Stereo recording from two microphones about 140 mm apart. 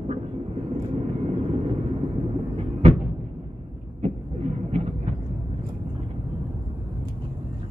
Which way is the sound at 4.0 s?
50° right (ahead or behind).